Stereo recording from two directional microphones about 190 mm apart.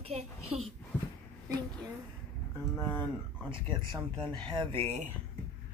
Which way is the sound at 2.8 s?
10° left (ahead or behind).